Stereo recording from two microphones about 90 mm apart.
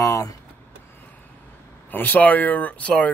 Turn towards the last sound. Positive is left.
turn(degrees=15)  # may be behind; listen again after turning